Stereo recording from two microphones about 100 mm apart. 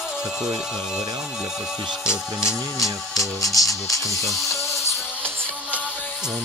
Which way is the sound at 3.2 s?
35° left (ahead or behind).